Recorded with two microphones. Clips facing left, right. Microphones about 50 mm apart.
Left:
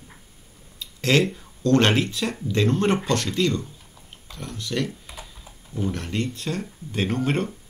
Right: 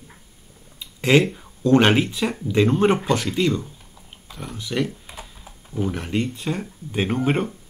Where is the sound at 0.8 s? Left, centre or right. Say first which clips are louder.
Right 3 dB; centre.